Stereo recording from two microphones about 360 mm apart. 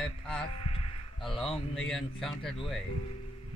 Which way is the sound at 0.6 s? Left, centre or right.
Centre.